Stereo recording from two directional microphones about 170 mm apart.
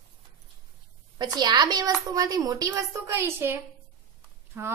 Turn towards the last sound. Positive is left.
turn(degrees=-15)  # may be behind; listen again after turning